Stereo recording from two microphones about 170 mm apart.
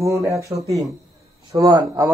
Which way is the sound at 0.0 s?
20° right (ahead or behind).